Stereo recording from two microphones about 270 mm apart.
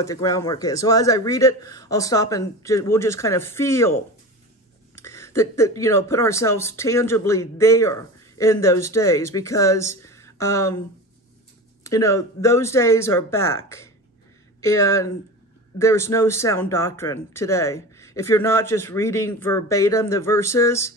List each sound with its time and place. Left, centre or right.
0.0 s speech: centre
4.9 s speech: centre
11.8 s speech: centre
14.6 s speech: centre